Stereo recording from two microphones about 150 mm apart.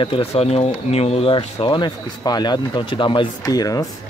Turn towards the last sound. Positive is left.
turn(degrees=25)  # may be behind; listen again after turning